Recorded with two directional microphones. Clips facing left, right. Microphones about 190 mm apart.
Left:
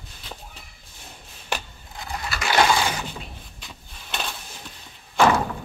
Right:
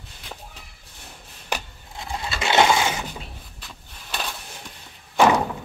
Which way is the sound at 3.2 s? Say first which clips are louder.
Even; centre (ahead or behind).